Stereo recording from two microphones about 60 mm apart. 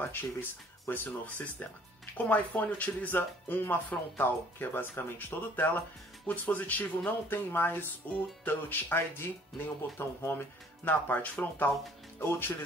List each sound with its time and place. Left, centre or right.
0.0 s speech: left
6.2 s speech: left